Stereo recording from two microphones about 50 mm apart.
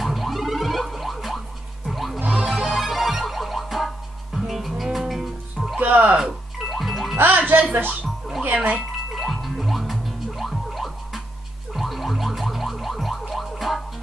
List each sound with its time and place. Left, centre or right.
0.0 s a sound: centre
1.9 s music: centre
2.1 s music: right
2.6 s music: centre
5.8 s music: right
6.1 s music: centre
7.2 s music: right
9.1 s music: centre
11.7 s a sound: centre
13.3 s music: centre